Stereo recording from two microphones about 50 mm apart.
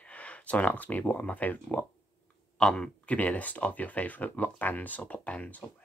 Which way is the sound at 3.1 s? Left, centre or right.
Left.